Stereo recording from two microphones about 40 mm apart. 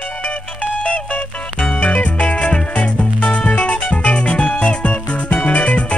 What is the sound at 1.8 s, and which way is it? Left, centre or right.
Music, left.